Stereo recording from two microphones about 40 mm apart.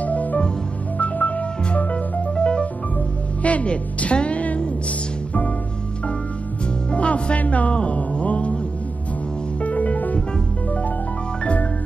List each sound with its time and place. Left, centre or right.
0.0 s music: left
2.3 s music: left
6.9 s music: left
9.6 s music: left